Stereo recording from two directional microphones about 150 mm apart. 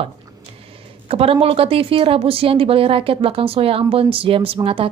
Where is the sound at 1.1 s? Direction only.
40° right (ahead or behind).